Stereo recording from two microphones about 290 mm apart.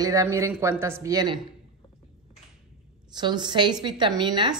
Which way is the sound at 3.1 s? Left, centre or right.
Centre.